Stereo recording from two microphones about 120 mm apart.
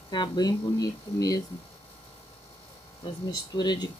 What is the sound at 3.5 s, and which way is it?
Speech, 35° left (ahead or behind).